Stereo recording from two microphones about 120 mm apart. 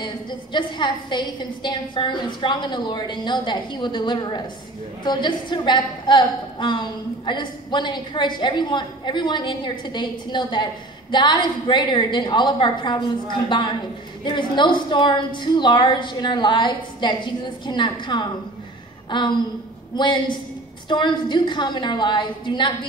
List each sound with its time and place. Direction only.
0.0 s a woman's voice: 40° left (ahead or behind)